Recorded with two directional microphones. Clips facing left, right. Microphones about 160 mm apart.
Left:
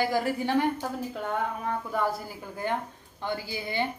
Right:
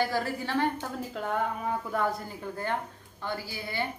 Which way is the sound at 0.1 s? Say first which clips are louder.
Left 4 dB; 15° left (ahead or behind).